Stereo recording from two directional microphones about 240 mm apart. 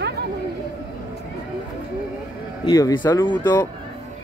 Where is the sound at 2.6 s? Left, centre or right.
Centre.